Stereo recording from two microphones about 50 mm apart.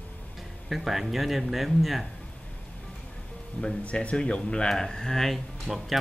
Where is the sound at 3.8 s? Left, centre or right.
Left; by 5.9 s centre.